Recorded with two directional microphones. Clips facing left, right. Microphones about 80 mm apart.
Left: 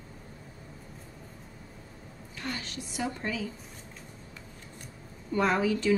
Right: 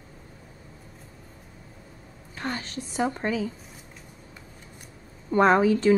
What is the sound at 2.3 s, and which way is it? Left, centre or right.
A woman's voice, right.